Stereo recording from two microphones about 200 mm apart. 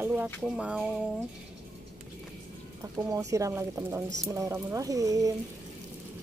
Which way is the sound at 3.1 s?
15° right (ahead or behind).